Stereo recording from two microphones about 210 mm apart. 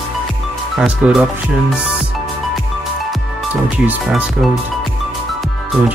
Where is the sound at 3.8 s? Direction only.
5° right (ahead or behind).